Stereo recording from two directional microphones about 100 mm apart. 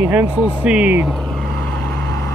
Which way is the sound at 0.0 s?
15° right (ahead or behind).